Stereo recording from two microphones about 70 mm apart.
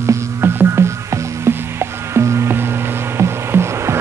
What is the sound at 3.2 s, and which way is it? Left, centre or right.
Insect, right.